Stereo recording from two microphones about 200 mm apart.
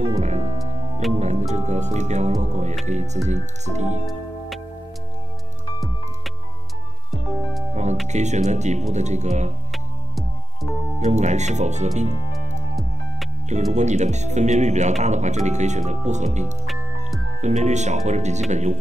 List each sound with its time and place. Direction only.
0.0 s music: 35° right (ahead or behind)
1.0 s speech: centre (ahead or behind)
1.5 s speech: 35° right (ahead or behind)
7.7 s speech: 35° right (ahead or behind)
9.7 s music: centre (ahead or behind)
11.0 s speech: 35° right (ahead or behind)
13.5 s speech: 35° right (ahead or behind)
17.4 s speech: 35° right (ahead or behind)